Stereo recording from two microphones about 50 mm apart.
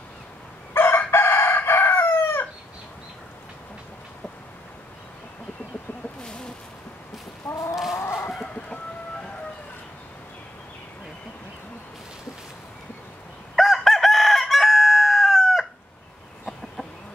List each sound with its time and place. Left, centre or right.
0.7 s chicken: left
6.2 s bird: centre
7.4 s chicken: left
8.0 s chicken: left
8.6 s a sound: centre
13.6 s chicken: centre